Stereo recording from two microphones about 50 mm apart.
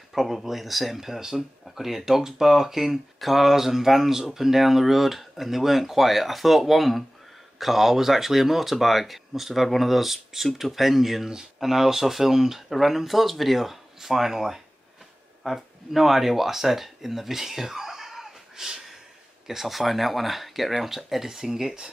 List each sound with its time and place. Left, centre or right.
0.1 s speech: centre